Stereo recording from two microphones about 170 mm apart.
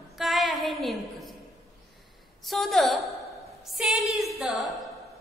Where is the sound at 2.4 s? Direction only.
Centre (ahead or behind).